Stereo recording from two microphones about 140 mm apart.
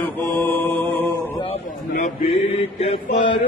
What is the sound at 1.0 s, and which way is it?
Speech, 20° left (ahead or behind).